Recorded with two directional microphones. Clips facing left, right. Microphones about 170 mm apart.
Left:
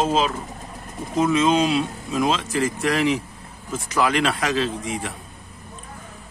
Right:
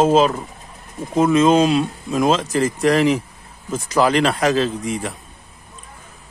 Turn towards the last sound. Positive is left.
turn(degrees=-40)  # may be behind; listen again after turning